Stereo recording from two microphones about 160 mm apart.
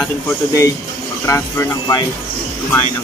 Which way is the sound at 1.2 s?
15° left (ahead or behind).